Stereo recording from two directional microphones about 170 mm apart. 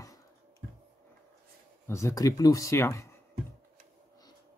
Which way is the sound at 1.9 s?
15° left (ahead or behind).